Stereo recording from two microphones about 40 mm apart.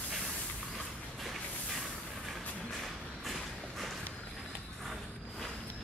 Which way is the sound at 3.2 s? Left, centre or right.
Centre.